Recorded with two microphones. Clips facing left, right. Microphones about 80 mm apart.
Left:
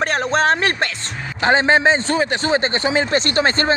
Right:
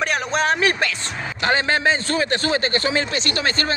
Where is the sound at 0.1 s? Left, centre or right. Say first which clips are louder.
Left 3 dB; left.